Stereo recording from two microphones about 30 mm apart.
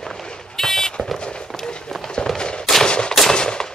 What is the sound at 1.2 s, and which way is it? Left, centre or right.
Run, left.